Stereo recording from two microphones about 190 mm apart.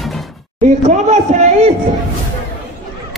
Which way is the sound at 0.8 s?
40° right (ahead or behind).